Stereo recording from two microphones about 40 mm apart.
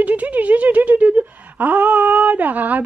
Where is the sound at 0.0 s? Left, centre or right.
Right.